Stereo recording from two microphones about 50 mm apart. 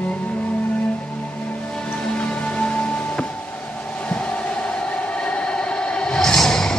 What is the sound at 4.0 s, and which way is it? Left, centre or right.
Train, left.